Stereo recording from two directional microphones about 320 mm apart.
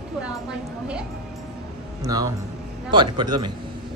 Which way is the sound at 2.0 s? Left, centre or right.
Centre.